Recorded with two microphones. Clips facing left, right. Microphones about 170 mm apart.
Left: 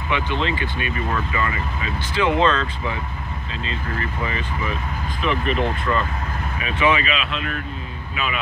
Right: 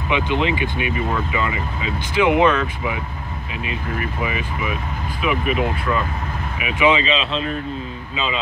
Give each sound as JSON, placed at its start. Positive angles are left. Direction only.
{"t": 0.1, "sound": "speech", "side_deg": -15}
{"t": 6.6, "sound": "speech", "side_deg": -15}